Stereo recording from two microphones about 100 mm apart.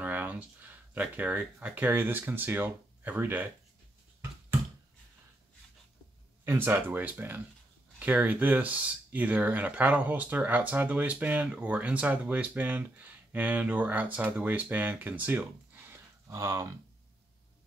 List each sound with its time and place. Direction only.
0.0 s speech: 15° right (ahead or behind)
6.4 s speech: 25° right (ahead or behind)
16.3 s speech: 30° right (ahead or behind)